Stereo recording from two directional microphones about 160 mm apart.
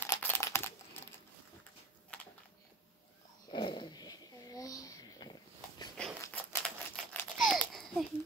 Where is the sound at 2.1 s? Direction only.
5° left (ahead or behind).